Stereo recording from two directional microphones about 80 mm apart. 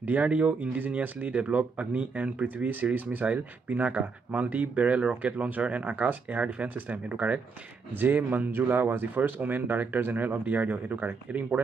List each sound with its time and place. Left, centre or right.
0.0 s speech: right